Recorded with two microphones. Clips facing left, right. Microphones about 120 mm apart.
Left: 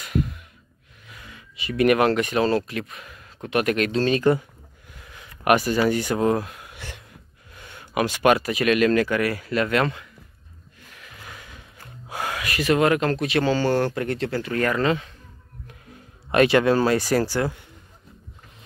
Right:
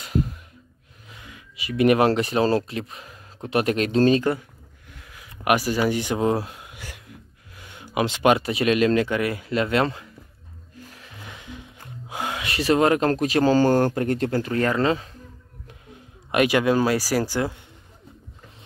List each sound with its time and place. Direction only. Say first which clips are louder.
0.0 s gasp: even; 30° right (ahead or behind)
1.2 s a sound: left 2 dB; 10° right (ahead or behind)
1.9 s speech: right 1 dB; 30° right (ahead or behind)
4.2 s speech: left 4 dB; 10° right (ahead or behind)
6.3 s speech: left 1 dB; 25° right (ahead or behind)
6.7 s speech: left 1 dB; 10° right (ahead or behind); by 10.0 s 25° right (ahead or behind)
10.9 s music: left 2 dB; 30° right (ahead or behind)
12.1 s speech: even; 20° right (ahead or behind); by 14.5 s 40° right (ahead or behind)
14.5 s speech: left 1 dB; 25° right (ahead or behind)
15.6 s speech: even; 15° right (ahead or behind)